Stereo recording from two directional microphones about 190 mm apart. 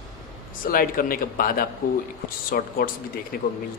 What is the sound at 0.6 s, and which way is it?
Speech, 50° left (ahead or behind).